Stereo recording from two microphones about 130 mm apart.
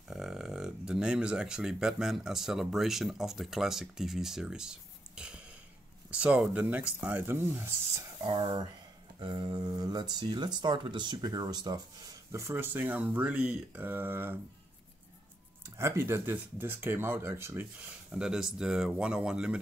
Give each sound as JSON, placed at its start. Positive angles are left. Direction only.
{"t": 0.1, "sound": "speech", "side_deg": -5}
{"t": 8.2, "sound": "speech", "side_deg": -40}
{"t": 15.8, "sound": "speech", "side_deg": -20}
{"t": 18.1, "sound": "speech", "side_deg": -5}